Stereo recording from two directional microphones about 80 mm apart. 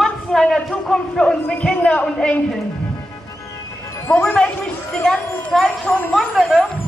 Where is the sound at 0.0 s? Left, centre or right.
Centre.